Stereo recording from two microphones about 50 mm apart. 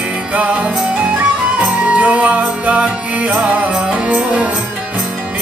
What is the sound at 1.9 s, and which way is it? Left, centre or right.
Music, right.